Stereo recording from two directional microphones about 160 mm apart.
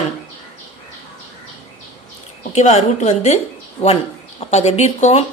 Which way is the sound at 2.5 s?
45° left (ahead or behind).